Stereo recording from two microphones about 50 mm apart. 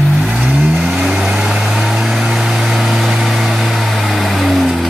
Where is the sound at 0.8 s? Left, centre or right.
Centre.